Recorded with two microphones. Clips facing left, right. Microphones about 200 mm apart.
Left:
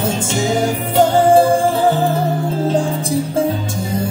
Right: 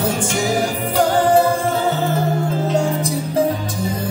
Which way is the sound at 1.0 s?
25° left (ahead or behind).